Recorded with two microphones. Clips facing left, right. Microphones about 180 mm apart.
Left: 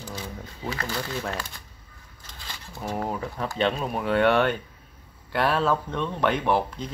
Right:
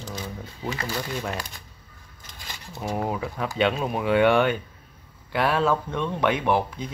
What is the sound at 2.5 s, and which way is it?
Speech, 10° right (ahead or behind).